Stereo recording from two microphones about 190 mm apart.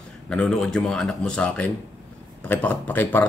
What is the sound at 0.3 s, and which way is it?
Speech, 5° left (ahead or behind).